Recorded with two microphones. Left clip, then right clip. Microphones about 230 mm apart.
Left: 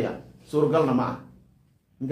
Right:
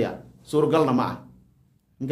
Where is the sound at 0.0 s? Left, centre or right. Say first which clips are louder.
Right 2 dB; right.